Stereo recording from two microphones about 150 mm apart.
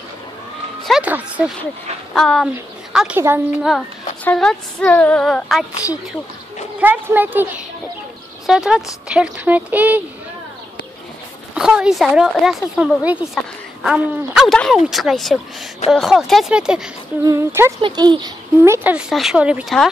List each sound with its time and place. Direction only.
0.8 s a sound: 5° right (ahead or behind)
2.1 s speech: centre (ahead or behind)
2.9 s a sound: 5° right (ahead or behind)
3.2 s speech: 15° right (ahead or behind)
4.2 s speech: 5° left (ahead or behind)
6.8 s speech: 10° right (ahead or behind)
11.5 s speech: 5° right (ahead or behind)
17.2 s a woman's voice: 20° right (ahead or behind)
17.8 s speech: 30° right (ahead or behind); by 19.6 s 5° right (ahead or behind)